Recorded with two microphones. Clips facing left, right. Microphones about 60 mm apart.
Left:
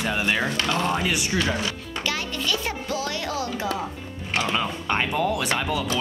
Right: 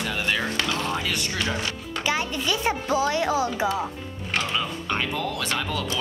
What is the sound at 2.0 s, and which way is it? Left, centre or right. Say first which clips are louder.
Speech: right 2 dB; centre.